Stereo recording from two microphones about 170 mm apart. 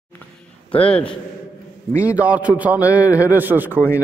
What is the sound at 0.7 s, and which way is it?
Speech, 30° left (ahead or behind).